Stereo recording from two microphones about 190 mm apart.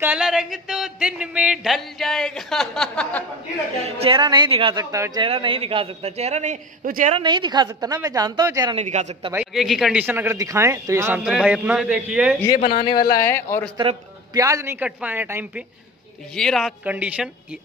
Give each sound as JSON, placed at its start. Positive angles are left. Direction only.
{"t": 0.0, "sound": "speech", "side_deg": -5}
{"t": 3.8, "sound": "a woman's voice", "side_deg": -30}
{"t": 4.9, "sound": "a man's voice", "side_deg": -20}
{"t": 7.2, "sound": "a woman's voice", "side_deg": -25}
{"t": 8.7, "sound": "a man's voice", "side_deg": -40}
{"t": 9.3, "sound": "speech", "side_deg": -5}
{"t": 12.5, "sound": "speech", "side_deg": 45}
{"t": 12.8, "sound": "speech", "side_deg": 25}
{"t": 13.7, "sound": "speech", "side_deg": -20}
{"t": 16.3, "sound": "speech", "side_deg": 0}